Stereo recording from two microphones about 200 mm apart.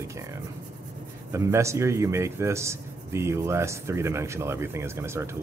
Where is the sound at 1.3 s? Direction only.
15° right (ahead or behind).